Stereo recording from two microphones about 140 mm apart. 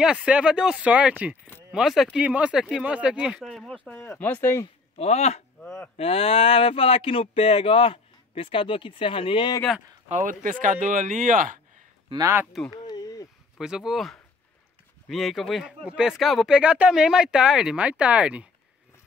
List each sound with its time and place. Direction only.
0.0 s speech: 5° right (ahead or behind); by 4.6 s 15° left (ahead or behind)
4.9 s speech: 50° left (ahead or behind)
5.6 s speech: 10° left (ahead or behind)
5.9 s speech: 40° left (ahead or behind)
10.0 s speech: 65° right (ahead or behind)
12.1 s speech: 20° right (ahead or behind)
12.8 s a sound: 30° left (ahead or behind)
13.6 s speech: 5° right (ahead or behind)